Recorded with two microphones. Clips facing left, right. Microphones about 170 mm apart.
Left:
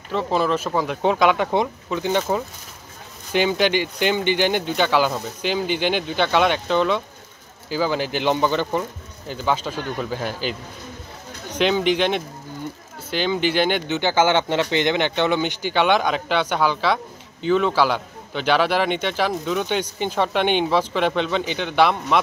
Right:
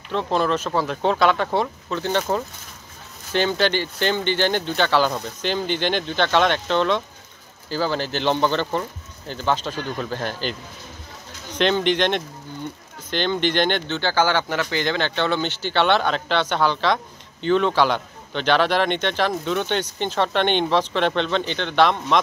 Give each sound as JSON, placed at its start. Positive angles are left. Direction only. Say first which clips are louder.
{"t": 0.1, "sound": "speech", "louder": "left 1 dB", "side_deg": 5}
{"t": 11.5, "sound": "speech", "louder": "left 1 dB", "side_deg": 5}